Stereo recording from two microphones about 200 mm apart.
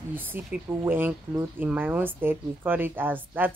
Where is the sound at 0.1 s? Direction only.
10° right (ahead or behind).